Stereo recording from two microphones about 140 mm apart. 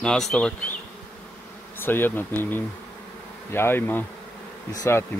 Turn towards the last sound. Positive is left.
turn(degrees=20)  # may be behind; listen again after turning